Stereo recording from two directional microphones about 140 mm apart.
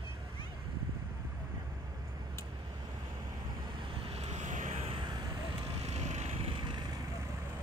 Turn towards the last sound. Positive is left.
turn(degrees=-55)  # may be behind; listen again after turning